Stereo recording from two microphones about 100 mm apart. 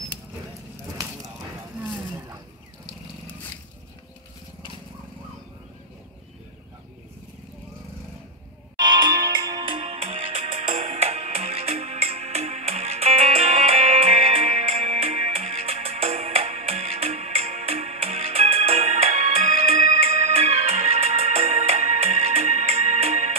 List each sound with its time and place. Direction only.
8.7 s music: 50° right (ahead or behind)
9.4 s music: 40° right (ahead or behind)
9.7 s music: 70° right (ahead or behind); by 23.3 s 90° right